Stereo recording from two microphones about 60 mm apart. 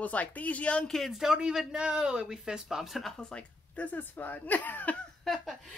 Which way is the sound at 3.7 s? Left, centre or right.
Left.